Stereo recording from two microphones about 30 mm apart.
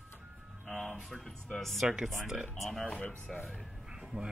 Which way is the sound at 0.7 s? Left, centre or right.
Centre.